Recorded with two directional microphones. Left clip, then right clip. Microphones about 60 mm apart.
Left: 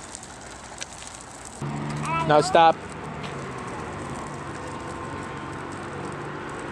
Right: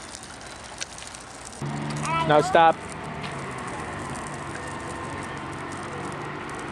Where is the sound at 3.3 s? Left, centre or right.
Right.